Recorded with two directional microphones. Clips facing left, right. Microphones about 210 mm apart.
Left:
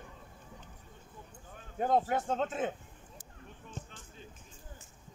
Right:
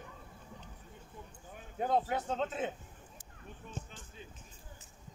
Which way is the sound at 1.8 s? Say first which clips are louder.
Left 3 dB; 50° left (ahead or behind).